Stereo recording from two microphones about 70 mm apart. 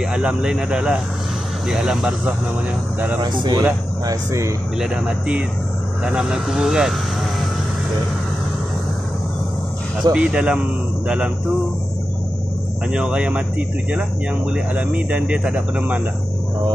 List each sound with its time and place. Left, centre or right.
0.0 s speech: centre
3.3 s speech: right
4.0 s speech: right
4.7 s speech: centre
10.1 s speech: centre
12.9 s speech: centre
14.5 s speech: right